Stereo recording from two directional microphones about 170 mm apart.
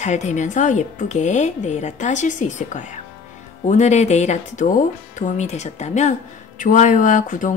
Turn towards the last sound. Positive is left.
turn(degrees=50)  # may be behind; listen again after turning